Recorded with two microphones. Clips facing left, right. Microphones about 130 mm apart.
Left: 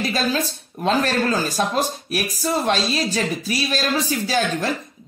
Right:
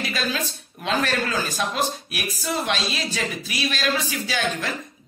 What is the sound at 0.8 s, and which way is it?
Speech, 40° left (ahead or behind).